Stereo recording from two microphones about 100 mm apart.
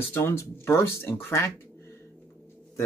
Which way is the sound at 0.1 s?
25° left (ahead or behind).